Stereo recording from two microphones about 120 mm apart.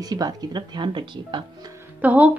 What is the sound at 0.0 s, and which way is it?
Speech, 30° right (ahead or behind).